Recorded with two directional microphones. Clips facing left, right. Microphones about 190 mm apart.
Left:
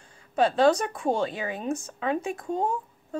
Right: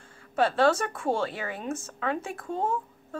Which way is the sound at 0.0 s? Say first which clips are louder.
Left 2 dB; 15° left (ahead or behind).